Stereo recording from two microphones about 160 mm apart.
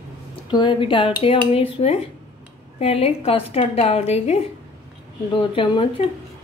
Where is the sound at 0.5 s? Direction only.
30° left (ahead or behind).